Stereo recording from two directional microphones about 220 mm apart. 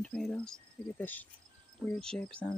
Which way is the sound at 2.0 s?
5° left (ahead or behind).